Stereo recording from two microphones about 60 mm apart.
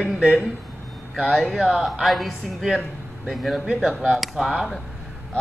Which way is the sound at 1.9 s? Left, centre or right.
Centre.